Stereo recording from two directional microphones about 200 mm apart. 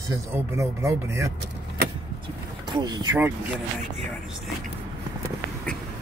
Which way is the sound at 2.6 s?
20° right (ahead or behind).